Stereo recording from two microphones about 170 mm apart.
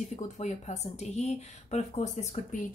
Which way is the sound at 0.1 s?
45° left (ahead or behind).